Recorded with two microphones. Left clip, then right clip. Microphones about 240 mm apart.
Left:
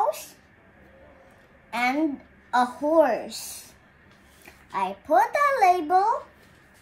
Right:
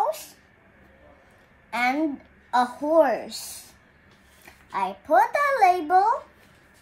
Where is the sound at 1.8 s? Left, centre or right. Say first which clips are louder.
Even; centre.